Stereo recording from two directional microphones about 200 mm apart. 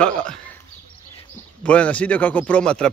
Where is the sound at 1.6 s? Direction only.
5° left (ahead or behind).